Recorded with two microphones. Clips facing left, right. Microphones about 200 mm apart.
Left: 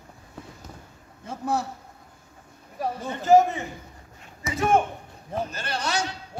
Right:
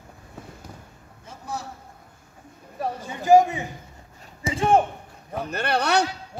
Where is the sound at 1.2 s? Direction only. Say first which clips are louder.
Left 7 dB; 60° left (ahead or behind).